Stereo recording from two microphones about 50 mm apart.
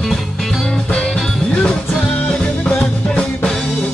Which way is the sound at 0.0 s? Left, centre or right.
Centre.